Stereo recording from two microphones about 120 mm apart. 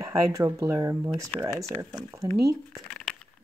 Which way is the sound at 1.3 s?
10° left (ahead or behind).